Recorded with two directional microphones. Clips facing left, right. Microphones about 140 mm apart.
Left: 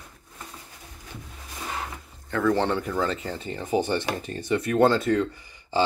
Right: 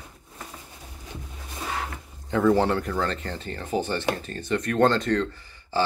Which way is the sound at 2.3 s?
15° right (ahead or behind).